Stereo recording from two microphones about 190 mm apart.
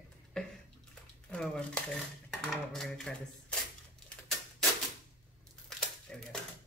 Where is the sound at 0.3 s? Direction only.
5° left (ahead or behind).